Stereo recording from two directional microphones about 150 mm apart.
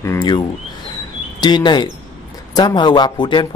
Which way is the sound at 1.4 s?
30° left (ahead or behind).